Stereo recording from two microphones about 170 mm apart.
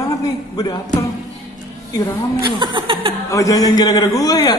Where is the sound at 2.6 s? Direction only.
30° right (ahead or behind).